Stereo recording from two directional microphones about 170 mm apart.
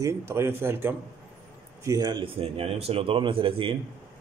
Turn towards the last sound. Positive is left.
turn(degrees=-30)  # may be behind; listen again after turning